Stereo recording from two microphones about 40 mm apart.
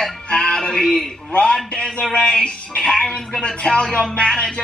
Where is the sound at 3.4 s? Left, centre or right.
Left.